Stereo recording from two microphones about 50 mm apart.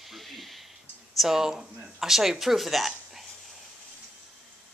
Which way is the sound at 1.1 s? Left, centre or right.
Centre.